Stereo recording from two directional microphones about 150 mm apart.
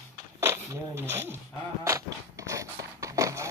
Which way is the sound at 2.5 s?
20° right (ahead or behind).